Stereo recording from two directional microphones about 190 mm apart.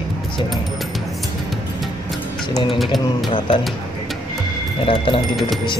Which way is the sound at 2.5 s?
25° left (ahead or behind).